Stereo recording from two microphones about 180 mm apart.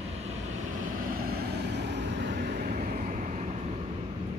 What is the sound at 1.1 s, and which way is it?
Vehicle, 55° right (ahead or behind).